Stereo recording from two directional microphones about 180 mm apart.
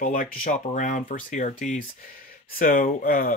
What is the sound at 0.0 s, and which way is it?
Speech, 50° left (ahead or behind).